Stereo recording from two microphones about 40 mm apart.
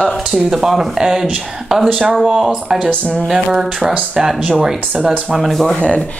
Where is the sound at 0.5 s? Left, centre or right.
Centre.